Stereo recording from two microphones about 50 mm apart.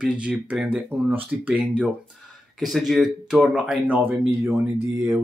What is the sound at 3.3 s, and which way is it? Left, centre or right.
Speech, centre.